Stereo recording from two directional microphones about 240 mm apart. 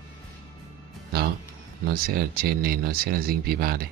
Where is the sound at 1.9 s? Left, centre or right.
Right.